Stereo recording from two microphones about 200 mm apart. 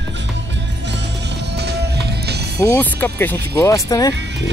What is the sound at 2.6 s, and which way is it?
Speech, 10° left (ahead or behind).